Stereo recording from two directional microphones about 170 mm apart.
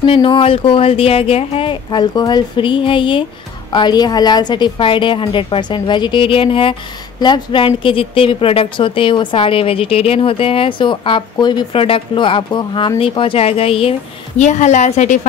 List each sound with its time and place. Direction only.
0.0 s a woman's voice: 30° left (ahead or behind)